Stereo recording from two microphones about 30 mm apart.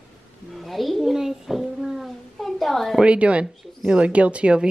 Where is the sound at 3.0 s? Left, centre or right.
Right.